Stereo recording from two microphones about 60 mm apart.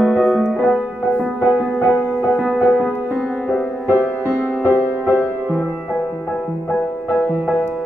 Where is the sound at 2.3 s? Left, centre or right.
Right.